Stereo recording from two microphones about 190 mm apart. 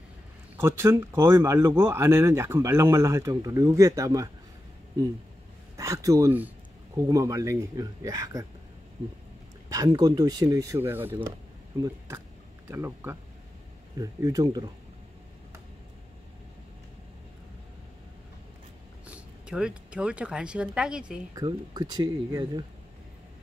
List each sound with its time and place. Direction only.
0.6 s speech: 15° right (ahead or behind)
5.8 s speech: 15° right (ahead or behind)
9.7 s speech: 20° right (ahead or behind)
12.6 s speech: 15° right (ahead or behind)
19.0 s speech: 5° right (ahead or behind)
21.4 s speech: 25° right (ahead or behind)